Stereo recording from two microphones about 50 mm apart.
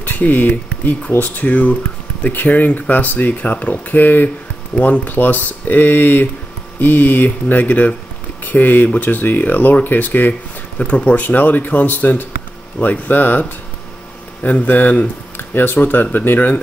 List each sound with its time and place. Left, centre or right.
0.0 s speech: left
10.8 s speech: left